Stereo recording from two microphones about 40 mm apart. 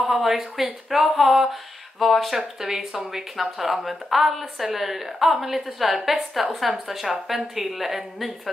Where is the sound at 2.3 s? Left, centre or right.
Centre.